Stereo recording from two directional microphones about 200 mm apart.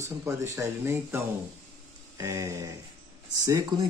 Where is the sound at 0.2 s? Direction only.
15° right (ahead or behind).